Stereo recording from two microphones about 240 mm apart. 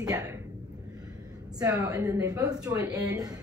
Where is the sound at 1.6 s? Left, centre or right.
Centre.